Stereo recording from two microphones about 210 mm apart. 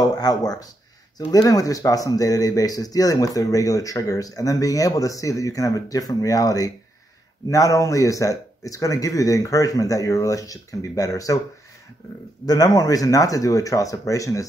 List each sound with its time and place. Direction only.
0.0 s speech: 20° left (ahead or behind)
12.4 s speech: 15° left (ahead or behind)